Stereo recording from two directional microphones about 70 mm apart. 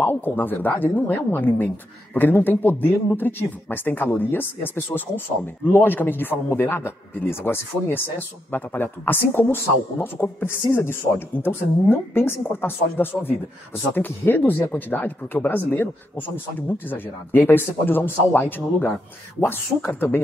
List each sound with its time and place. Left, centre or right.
0.0 s speech: left